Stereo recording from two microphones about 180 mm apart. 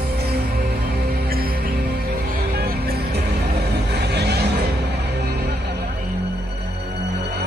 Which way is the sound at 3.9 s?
65° right (ahead or behind).